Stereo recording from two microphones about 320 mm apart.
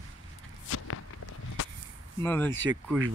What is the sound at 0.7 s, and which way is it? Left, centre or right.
Walk, left.